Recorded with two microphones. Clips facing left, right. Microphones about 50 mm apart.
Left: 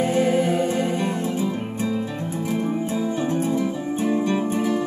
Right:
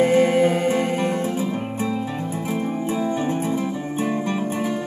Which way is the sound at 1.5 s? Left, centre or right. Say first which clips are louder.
Right 1 dB; centre.